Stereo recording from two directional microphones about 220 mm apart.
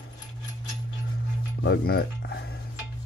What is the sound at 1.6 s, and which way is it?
Music, 50° left (ahead or behind).